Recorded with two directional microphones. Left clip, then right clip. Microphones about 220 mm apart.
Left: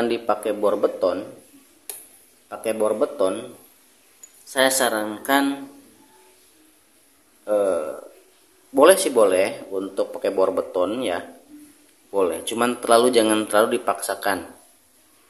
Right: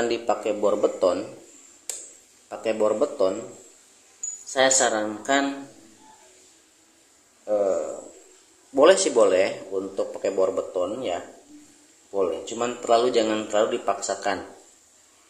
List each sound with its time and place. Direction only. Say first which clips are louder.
0.0 s speech: left 2 dB; 10° left (ahead or behind)
2.5 s speech: left 1 dB; 5° left (ahead or behind)
4.5 s speech: left 1 dB; 10° left (ahead or behind)
7.4 s speech: left 2 dB; 15° left (ahead or behind)
8.7 s speech: left 2 dB; 10° left (ahead or behind)